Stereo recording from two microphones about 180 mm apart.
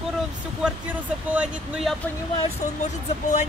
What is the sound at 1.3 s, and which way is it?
Music, 5° right (ahead or behind).